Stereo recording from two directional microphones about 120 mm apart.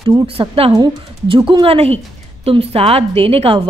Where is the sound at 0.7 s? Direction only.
40° right (ahead or behind).